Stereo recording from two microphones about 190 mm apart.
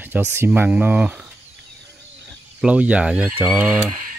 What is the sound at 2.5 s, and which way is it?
Speech, 5° right (ahead or behind).